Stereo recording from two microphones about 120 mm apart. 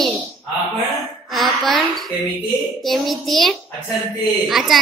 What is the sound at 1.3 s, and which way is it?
A woman's voice, centre (ahead or behind).